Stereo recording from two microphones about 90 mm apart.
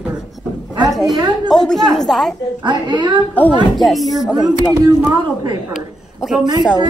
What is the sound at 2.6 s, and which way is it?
Speech, 60° right (ahead or behind).